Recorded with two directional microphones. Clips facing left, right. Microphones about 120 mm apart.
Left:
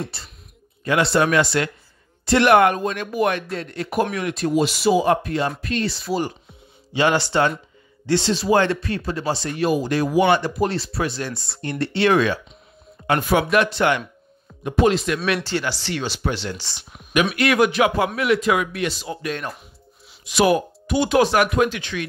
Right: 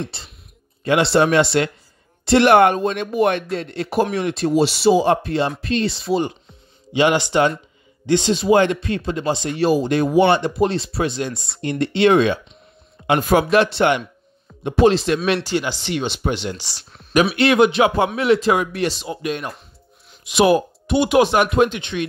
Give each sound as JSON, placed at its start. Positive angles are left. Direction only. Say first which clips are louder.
{"t": 0.8, "sound": "speech", "louder": "right 3 dB", "side_deg": -25}
{"t": 9.6, "sound": "speech", "louder": "right 3 dB", "side_deg": -30}
{"t": 13.2, "sound": "speech", "louder": "right 4 dB", "side_deg": -40}
{"t": 13.6, "sound": "speech", "louder": "right 3 dB", "side_deg": -25}
{"t": 15.4, "sound": "speech", "louder": "right 2 dB", "side_deg": -15}
{"t": 16.7, "sound": "speech", "louder": "left 1 dB", "side_deg": 10}
{"t": 17.1, "sound": "speech", "louder": "right 3 dB", "side_deg": -35}